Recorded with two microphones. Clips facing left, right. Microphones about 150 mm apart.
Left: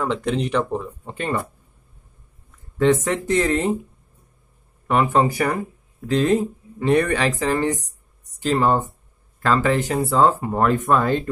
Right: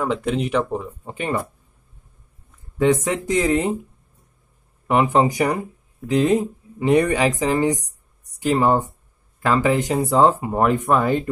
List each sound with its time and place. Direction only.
0.0 s speech: 5° right (ahead or behind)
2.8 s speech: 10° right (ahead or behind)
4.8 s speech: 15° right (ahead or behind)